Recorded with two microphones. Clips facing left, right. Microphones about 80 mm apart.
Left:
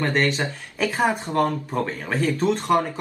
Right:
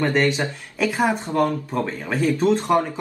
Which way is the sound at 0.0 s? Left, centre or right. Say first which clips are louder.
Right 2 dB; centre.